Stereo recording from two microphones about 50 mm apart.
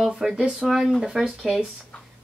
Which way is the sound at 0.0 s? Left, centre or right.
Centre.